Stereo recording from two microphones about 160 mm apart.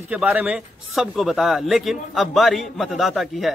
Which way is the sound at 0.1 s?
10° right (ahead or behind).